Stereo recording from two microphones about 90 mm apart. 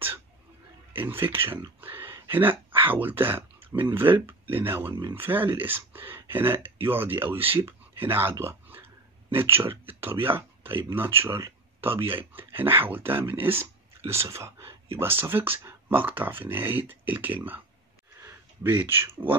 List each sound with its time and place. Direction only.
1.0 s speech: 25° right (ahead or behind)
1.8 s a sound: 25° right (ahead or behind)
2.9 s speech: 20° right (ahead or behind)